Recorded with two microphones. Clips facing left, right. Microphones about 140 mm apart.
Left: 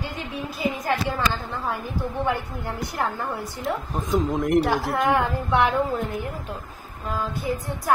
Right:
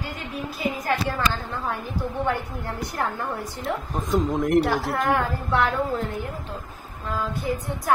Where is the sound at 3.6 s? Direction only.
Centre (ahead or behind).